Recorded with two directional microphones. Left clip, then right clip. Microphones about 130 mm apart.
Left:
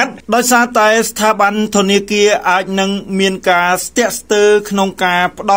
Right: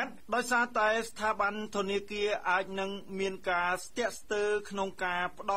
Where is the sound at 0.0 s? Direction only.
35° left (ahead or behind).